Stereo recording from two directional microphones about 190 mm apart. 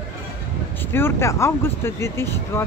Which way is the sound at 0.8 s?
10° left (ahead or behind).